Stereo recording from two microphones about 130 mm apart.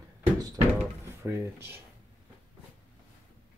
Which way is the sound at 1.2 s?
20° right (ahead or behind).